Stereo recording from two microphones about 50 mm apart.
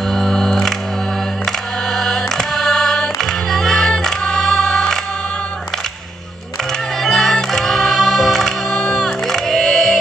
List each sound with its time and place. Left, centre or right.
0.1 s music: centre
2.0 s music: centre
7.0 s music: centre